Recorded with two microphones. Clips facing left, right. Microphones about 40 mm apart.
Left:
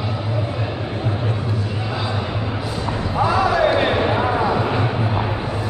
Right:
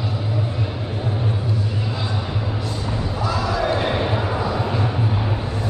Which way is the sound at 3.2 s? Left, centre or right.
Left.